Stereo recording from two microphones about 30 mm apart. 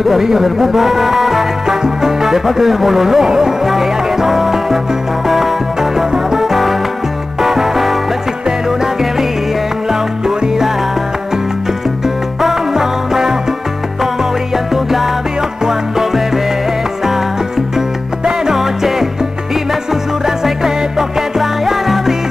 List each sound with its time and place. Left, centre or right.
0.0 s speech: centre
1.8 s music: centre
9.8 s music: centre
12.7 s music: centre
14.7 s music: centre
18.5 s music: centre